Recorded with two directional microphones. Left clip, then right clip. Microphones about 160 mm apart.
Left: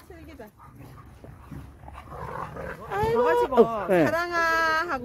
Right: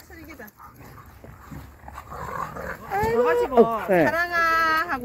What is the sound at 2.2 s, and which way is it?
Dog, centre (ahead or behind).